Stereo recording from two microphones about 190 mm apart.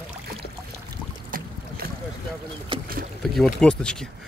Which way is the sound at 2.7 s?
25° right (ahead or behind).